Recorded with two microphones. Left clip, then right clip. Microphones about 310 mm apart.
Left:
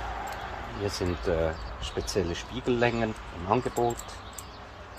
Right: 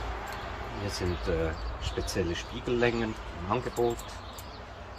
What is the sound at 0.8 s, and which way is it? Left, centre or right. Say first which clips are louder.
Speech: left 4 dB; centre.